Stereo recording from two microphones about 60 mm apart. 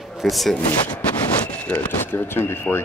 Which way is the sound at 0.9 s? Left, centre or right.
Left.